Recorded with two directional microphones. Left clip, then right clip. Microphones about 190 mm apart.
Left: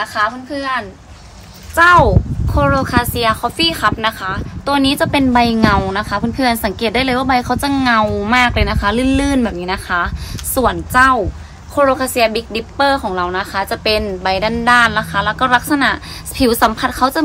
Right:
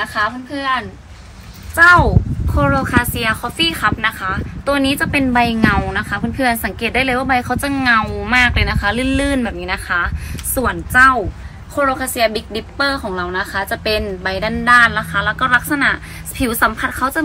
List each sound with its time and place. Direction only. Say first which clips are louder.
0.5 s a woman's voice: right 1 dB; 15° left (ahead or behind)
1.8 s a woman's voice: left 1 dB; 35° left (ahead or behind)
2.5 s a woman's voice: left 1 dB; 60° left (ahead or behind)